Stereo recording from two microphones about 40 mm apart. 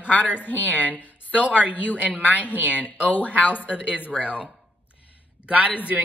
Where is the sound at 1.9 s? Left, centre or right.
Right.